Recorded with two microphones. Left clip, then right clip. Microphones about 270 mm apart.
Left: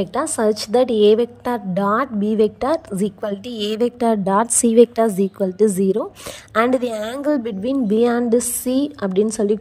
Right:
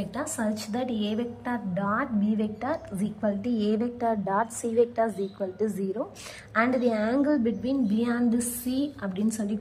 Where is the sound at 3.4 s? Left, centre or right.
Centre.